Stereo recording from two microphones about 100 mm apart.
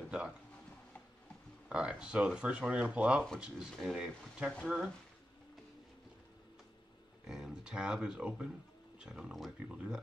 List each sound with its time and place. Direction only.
1.7 s speech: 10° right (ahead or behind)
7.2 s speech: 5° right (ahead or behind)